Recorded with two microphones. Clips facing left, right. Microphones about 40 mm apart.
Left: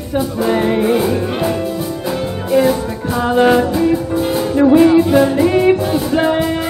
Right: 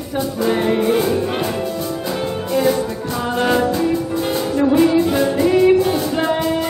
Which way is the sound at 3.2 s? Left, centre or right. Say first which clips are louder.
Left 5 dB; centre.